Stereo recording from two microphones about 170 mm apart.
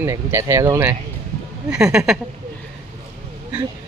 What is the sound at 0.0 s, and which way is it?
Speech, 15° right (ahead or behind).